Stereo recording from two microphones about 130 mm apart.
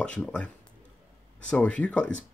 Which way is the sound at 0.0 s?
10° left (ahead or behind).